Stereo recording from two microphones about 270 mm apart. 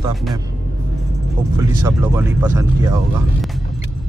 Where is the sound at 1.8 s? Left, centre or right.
Centre.